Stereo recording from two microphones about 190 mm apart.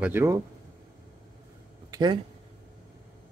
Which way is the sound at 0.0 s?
10° right (ahead or behind).